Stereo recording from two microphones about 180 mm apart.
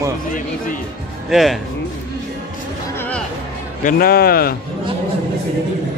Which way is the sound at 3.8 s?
55° left (ahead or behind).